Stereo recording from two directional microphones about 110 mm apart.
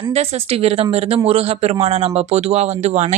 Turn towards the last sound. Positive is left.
turn(degrees=-90)